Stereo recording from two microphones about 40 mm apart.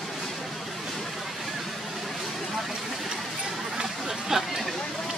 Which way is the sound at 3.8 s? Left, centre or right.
Centre.